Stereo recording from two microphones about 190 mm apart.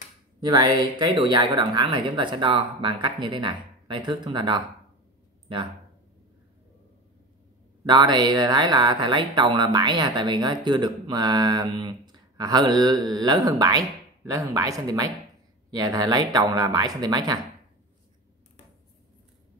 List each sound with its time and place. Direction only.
0.4 s speech: 25° right (ahead or behind)
7.8 s speech: 20° right (ahead or behind)